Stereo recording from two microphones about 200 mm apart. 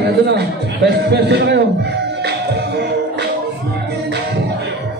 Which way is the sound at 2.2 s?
55° right (ahead or behind).